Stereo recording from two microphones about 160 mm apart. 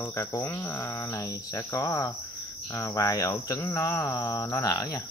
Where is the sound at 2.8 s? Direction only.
20° left (ahead or behind).